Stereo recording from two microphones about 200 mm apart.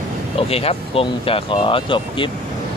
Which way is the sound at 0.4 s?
30° left (ahead or behind).